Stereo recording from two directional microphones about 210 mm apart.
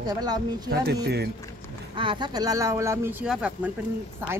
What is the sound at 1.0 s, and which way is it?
Speech, 50° right (ahead or behind).